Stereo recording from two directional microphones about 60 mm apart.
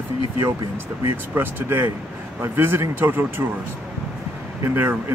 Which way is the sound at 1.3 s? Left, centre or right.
Right.